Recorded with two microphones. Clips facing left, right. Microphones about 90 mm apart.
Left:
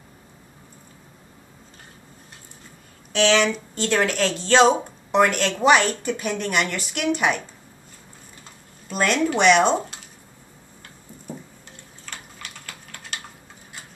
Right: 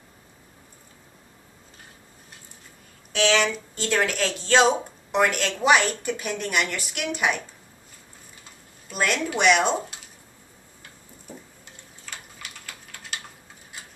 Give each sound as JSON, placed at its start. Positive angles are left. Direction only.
{"t": 3.1, "sound": "a woman's voice", "side_deg": -5}
{"t": 8.8, "sound": "a woman's voice", "side_deg": -5}
{"t": 12.1, "sound": "typing", "side_deg": -5}